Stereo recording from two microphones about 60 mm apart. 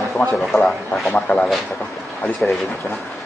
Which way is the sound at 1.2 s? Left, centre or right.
Centre.